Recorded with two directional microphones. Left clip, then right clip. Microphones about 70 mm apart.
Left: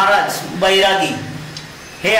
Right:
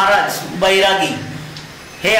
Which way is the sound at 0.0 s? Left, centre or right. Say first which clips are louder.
Even; centre.